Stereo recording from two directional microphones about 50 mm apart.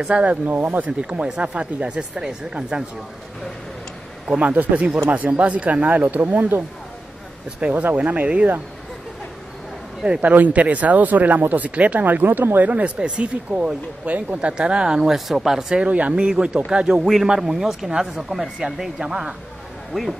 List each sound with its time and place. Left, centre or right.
0.1 s speech: right
1.2 s speech: right
4.4 s speech: right
7.7 s speech: right
10.2 s speech: right; by 15.8 s centre
15.8 s speech: right
19.9 s speech: centre